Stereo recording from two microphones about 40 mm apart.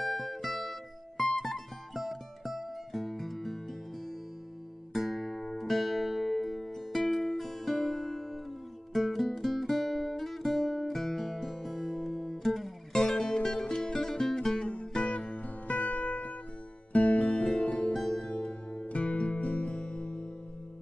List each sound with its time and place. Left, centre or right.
0.0 s music: centre
4.9 s music: centre
12.9 s music: centre
14.7 s music: left
15.3 s music: left
17.2 s music: left
17.9 s music: centre
18.3 s music: left